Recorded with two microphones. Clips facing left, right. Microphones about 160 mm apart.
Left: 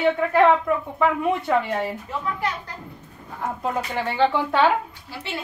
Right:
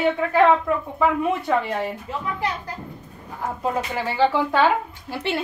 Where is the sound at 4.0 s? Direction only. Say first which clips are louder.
Even; 5° right (ahead or behind).